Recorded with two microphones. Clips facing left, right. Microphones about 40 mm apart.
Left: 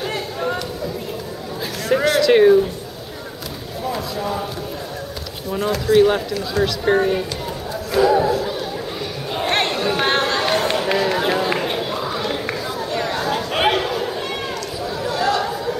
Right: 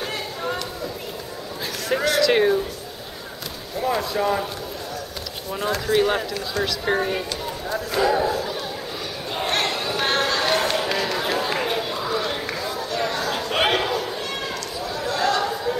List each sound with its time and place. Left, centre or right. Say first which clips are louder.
0.1 s a sound: left 4 dB; centre
2.0 s speech: left 5 dB; centre
3.9 s speech: right 3 dB; centre
5.5 s speech: left 5 dB; centre
7.7 s a sound: left 5 dB; centre
9.5 s crowd: left 4 dB; left
9.8 s run: left 4 dB; centre
13.3 s chatter: left 3 dB; centre